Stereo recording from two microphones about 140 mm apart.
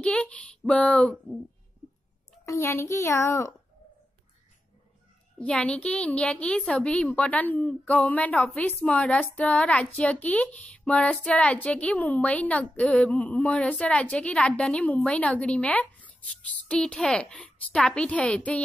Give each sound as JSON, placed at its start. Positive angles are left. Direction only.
{"t": 0.0, "sound": "speech", "side_deg": 10}
{"t": 2.4, "sound": "a child's voice", "side_deg": 20}
{"t": 5.4, "sound": "a woman's voice", "side_deg": 10}